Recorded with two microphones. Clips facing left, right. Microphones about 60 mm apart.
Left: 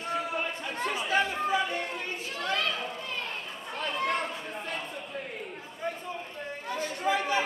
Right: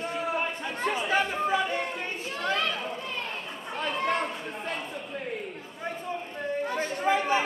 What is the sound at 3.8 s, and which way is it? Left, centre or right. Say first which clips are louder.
Chatter: right 2 dB; centre.